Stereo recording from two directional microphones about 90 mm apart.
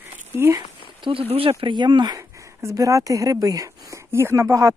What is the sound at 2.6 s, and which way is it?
Speech, 35° right (ahead or behind).